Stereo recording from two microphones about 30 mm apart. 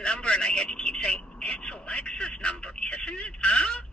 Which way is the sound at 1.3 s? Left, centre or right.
Left.